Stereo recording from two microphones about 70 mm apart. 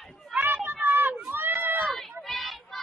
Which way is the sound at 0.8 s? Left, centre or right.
Right.